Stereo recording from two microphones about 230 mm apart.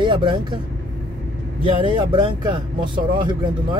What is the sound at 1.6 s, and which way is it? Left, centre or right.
Speech, right.